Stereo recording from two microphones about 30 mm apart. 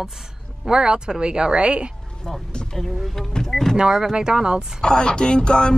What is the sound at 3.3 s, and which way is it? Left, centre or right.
Speech, centre.